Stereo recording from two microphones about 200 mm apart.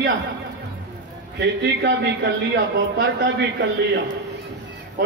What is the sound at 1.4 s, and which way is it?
A man's voice, 60° right (ahead or behind).